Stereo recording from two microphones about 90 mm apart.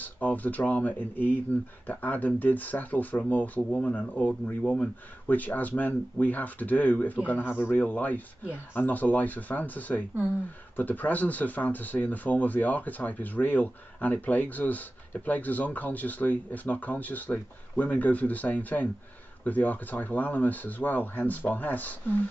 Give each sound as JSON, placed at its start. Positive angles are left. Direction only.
{"t": 0.0, "sound": "speech", "side_deg": 20}